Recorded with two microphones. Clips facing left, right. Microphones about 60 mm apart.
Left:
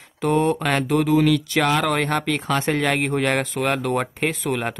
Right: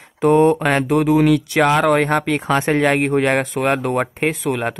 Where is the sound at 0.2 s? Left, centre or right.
Centre.